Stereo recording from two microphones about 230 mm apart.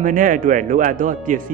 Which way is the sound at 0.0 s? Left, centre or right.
Right.